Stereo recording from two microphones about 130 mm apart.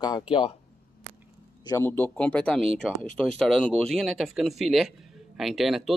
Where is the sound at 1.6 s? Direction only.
30° left (ahead or behind).